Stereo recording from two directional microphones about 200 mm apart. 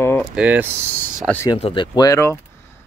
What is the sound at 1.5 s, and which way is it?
Speech, 25° left (ahead or behind).